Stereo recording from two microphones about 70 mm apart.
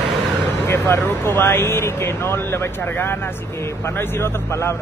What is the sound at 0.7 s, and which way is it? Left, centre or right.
Speech, left.